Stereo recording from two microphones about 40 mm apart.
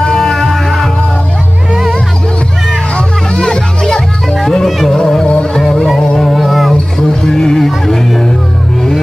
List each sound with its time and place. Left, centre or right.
0.2 s music: centre
3.3 s music: centre
5.2 s music: left
5.5 s music: centre
5.9 s a sound: centre
6.3 s a sound: centre
7.0 s music: centre